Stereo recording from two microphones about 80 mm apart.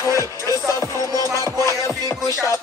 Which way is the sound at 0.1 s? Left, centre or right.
Right.